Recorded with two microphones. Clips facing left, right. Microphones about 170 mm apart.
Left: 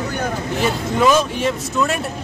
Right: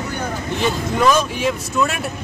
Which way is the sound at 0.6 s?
Centre (ahead or behind).